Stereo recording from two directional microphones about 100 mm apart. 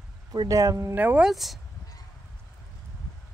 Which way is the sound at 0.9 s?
15° right (ahead or behind).